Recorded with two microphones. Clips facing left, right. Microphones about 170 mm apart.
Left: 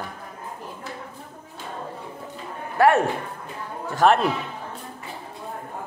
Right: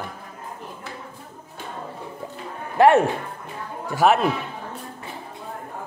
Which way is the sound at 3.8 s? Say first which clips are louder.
Even; 5° right (ahead or behind).